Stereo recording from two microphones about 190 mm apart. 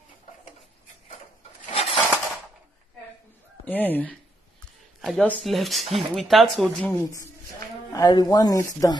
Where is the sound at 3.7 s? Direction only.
10° left (ahead or behind).